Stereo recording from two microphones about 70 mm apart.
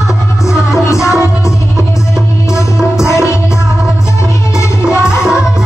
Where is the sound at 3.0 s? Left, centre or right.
Left.